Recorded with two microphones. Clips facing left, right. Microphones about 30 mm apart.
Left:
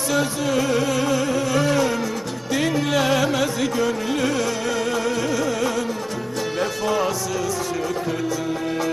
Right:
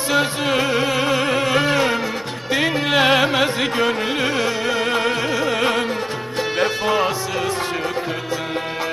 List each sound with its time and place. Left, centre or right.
0.1 s music: right